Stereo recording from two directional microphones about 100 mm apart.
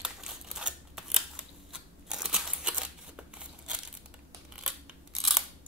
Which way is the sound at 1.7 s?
5° right (ahead or behind).